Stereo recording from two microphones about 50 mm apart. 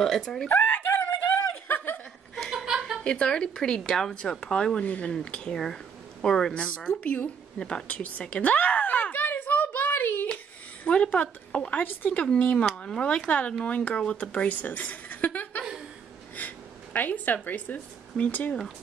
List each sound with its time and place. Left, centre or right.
0.2 s speech: centre
0.6 s snicker: left
2.5 s chuckle: centre
3.0 s speech: centre
6.5 s speech: left
7.5 s speech: centre
7.9 s a sound: left
10.3 s a sound: left
11.8 s speech: left
12.1 s speech: left
14.5 s a woman's voice: left
16.3 s a sound: left
18.1 s speech: left